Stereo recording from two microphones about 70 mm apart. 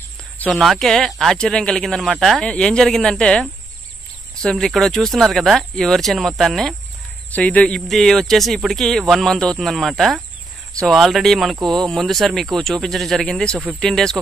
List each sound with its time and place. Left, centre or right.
0.5 s speech: centre
2.0 s speech: centre
2.4 s speech: centre
7.3 s speech: left
7.9 s speech: centre